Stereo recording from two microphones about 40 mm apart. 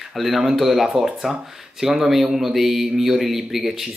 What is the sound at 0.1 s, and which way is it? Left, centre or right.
Speech, centre.